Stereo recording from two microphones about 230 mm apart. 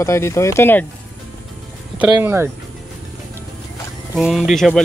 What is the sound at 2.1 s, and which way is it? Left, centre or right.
Speech, centre.